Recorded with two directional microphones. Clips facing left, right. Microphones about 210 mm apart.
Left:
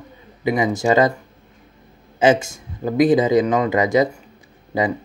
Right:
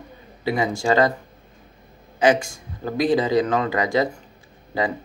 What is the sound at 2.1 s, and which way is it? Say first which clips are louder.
Speech: left 2 dB; 25° left (ahead or behind).